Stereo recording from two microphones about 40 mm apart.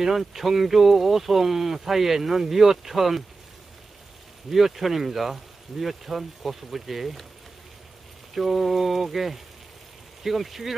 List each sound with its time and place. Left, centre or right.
0.0 s speech: centre
4.5 s speech: centre
8.4 s speech: centre